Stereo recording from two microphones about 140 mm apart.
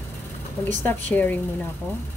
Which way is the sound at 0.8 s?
15° left (ahead or behind).